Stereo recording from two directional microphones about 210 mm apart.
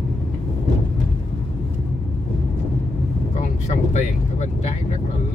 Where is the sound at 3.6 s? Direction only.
35° left (ahead or behind).